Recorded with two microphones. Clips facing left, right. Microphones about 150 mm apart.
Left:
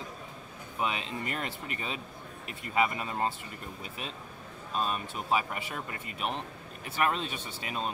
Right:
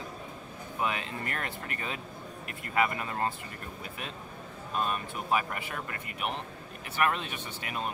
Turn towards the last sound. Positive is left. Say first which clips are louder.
# even
turn(degrees=25)  # may be behind; listen again after turning